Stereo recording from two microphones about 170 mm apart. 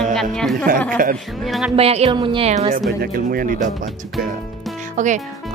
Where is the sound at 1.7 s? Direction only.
35° right (ahead or behind).